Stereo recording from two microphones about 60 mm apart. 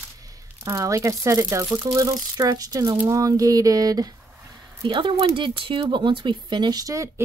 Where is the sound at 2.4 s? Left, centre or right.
Right.